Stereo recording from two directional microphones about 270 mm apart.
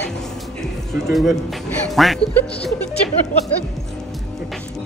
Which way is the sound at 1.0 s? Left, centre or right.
Centre.